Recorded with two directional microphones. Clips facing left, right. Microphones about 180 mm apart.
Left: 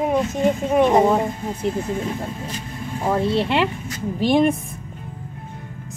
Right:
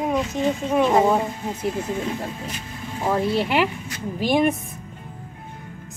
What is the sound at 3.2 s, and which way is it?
Speech, 25° left (ahead or behind).